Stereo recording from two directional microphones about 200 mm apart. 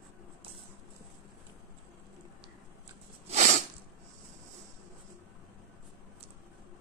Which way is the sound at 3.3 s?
35° right (ahead or behind).